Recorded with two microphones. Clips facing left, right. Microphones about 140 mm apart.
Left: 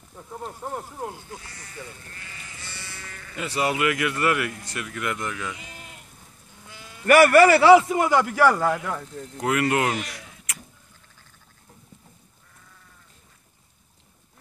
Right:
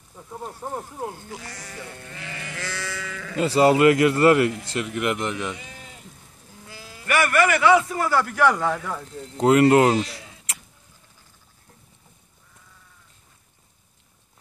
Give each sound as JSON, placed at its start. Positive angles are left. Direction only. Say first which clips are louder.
{"t": 0.3, "sound": "a sound", "louder": "right 1 dB", "side_deg": -10}
{"t": 1.3, "sound": "sheep", "louder": "right 3 dB", "side_deg": -90}
{"t": 3.3, "sound": "speech", "louder": "right 8 dB", "side_deg": -30}
{"t": 6.7, "sound": "sheep", "louder": "right 1 dB", "side_deg": -30}
{"t": 7.1, "sound": "a man's voice", "louder": "left 6 dB", "side_deg": 40}
{"t": 7.9, "sound": "speech", "louder": "left 2 dB", "side_deg": 15}
{"t": 9.4, "sound": "speech", "louder": "right 8 dB", "side_deg": -30}